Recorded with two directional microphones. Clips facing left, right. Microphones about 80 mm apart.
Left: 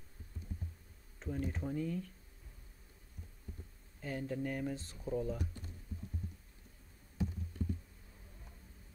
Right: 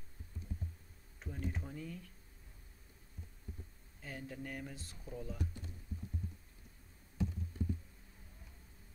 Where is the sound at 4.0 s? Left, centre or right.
Centre.